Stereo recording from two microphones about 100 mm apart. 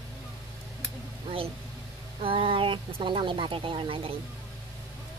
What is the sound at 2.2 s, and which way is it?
Speech, 60° right (ahead or behind).